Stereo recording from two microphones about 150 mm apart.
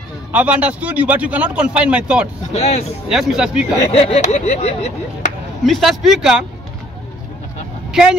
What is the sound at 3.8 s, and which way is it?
Speech, 40° left (ahead or behind).